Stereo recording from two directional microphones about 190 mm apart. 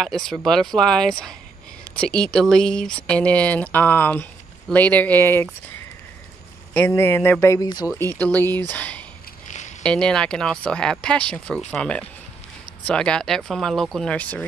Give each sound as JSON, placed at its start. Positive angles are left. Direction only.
{"t": 0.0, "sound": "speech", "side_deg": 0}
{"t": 6.7, "sound": "speech", "side_deg": 10}
{"t": 9.5, "sound": "a sound", "side_deg": 40}
{"t": 9.8, "sound": "speech", "side_deg": 5}